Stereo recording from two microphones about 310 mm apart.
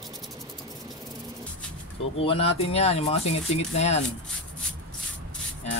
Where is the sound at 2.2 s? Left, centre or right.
Centre.